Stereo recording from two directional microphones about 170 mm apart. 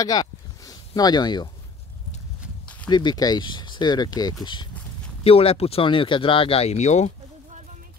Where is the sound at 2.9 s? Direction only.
25° left (ahead or behind).